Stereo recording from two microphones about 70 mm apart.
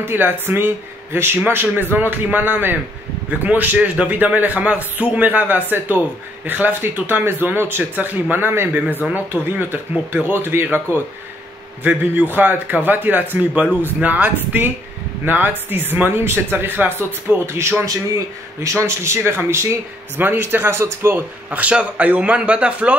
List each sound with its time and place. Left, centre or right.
0.0 s a man's voice: right
17.8 s a man's voice: right
21.5 s a man's voice: centre